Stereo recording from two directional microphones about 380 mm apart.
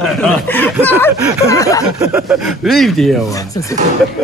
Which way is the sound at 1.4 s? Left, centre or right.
Centre.